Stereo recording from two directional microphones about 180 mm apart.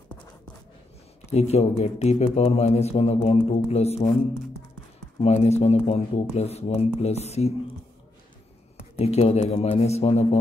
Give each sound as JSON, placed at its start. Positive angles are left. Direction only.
{"t": 1.3, "sound": "speech", "side_deg": 35}
{"t": 5.2, "sound": "speech", "side_deg": 35}
{"t": 8.7, "sound": "speech", "side_deg": 35}